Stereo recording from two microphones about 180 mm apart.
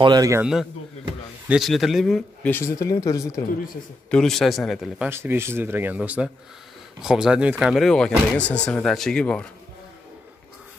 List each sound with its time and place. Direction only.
0.0 s a man's voice: 20° right (ahead or behind)
0.4 s speech: centre (ahead or behind); by 3.4 s 20° left (ahead or behind)
4.1 s speech: centre (ahead or behind)
5.1 s speech: 15° right (ahead or behind); by 9.5 s 5° left (ahead or behind)